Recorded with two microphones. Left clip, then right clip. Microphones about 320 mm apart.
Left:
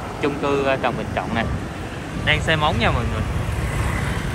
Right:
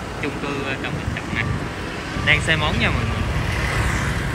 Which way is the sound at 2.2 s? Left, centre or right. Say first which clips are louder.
Even; centre.